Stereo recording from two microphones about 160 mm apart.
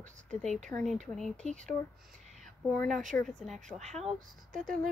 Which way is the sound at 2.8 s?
Centre (ahead or behind).